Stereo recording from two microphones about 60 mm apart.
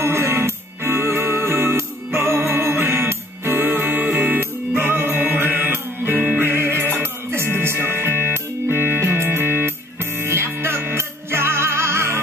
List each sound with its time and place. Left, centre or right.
0.0 s music: right